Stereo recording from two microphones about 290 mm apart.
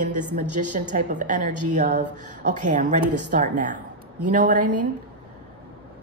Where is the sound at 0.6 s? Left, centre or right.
Right.